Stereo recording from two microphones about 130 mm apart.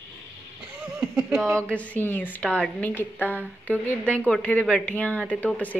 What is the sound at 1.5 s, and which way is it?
A woman's voice, 10° left (ahead or behind).